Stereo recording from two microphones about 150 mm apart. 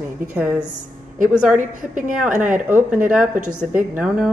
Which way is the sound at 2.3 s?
60° right (ahead or behind).